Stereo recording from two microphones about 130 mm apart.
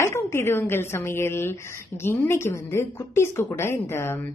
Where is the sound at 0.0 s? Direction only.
20° left (ahead or behind).